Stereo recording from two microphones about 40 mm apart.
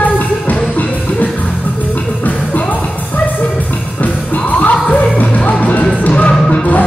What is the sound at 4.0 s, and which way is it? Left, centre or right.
Music, left.